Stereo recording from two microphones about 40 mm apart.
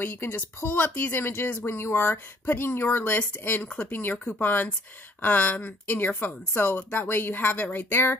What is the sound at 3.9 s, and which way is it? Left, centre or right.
Speech, left.